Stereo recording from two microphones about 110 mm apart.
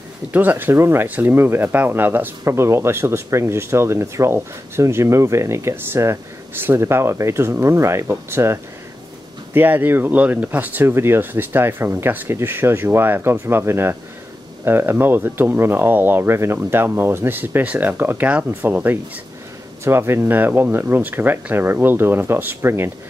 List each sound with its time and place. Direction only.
0.3 s speech: 15° right (ahead or behind)